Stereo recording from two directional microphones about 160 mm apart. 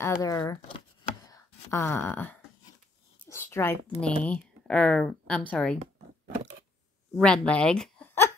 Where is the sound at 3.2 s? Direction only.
15° left (ahead or behind).